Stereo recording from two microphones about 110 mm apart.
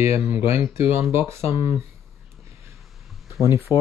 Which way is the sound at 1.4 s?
65° left (ahead or behind).